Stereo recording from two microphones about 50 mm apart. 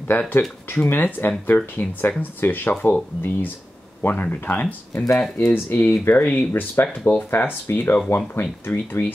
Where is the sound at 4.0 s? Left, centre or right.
Left.